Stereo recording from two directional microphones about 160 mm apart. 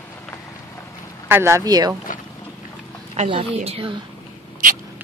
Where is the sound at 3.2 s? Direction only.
35° right (ahead or behind).